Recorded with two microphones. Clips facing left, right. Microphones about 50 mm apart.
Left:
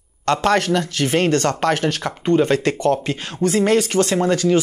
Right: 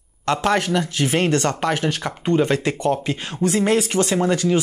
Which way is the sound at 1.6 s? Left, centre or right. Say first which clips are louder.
Left 2 dB; left.